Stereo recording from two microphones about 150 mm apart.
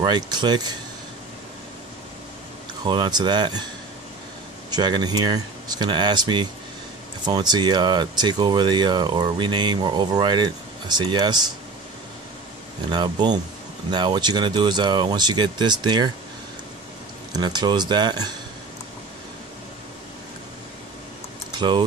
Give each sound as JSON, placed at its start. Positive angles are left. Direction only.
{"t": 0.0, "sound": "speech", "side_deg": -30}
{"t": 2.8, "sound": "speech", "side_deg": -30}
{"t": 4.6, "sound": "speech", "side_deg": -30}
{"t": 12.9, "sound": "speech", "side_deg": -30}
{"t": 17.3, "sound": "speech", "side_deg": -30}
{"t": 21.5, "sound": "speech", "side_deg": -30}